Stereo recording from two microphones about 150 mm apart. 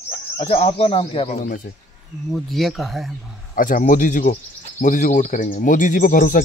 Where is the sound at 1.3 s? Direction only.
65° left (ahead or behind).